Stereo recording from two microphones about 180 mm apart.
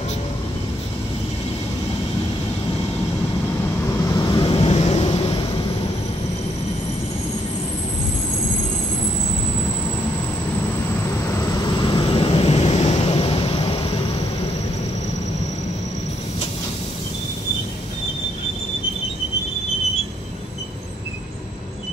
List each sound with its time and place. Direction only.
4.1 s vehicle: 25° left (ahead or behind)
11.2 s vehicle: 15° left (ahead or behind); by 14.0 s 35° left (ahead or behind)